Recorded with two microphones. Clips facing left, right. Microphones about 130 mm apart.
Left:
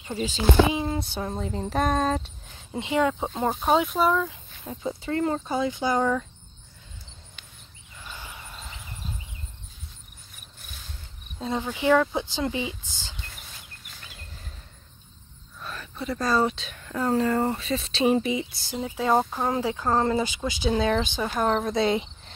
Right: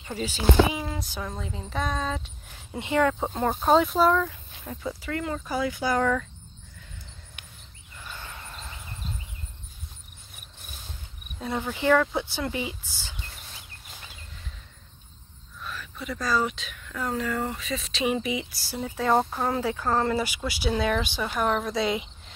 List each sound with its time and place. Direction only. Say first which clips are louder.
0.1 s speech: left 1 dB; 25° left (ahead or behind)
1.5 s speech: left 7 dB; 45° left (ahead or behind)
2.7 s speech: even; 20° left (ahead or behind)
3.6 s speech: right 2 dB; 5° left (ahead or behind)
4.2 s speech: even; 20° left (ahead or behind)
8.1 s turkey: even; 10° left (ahead or behind)
11.3 s speech: left 1 dB; 20° left (ahead or behind)
15.6 s speech: left 3 dB; 30° left (ahead or behind)